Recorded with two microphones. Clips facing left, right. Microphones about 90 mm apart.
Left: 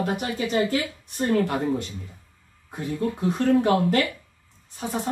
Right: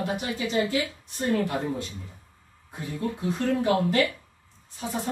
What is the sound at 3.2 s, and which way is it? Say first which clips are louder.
Speech: left 4 dB; 55° left (ahead or behind).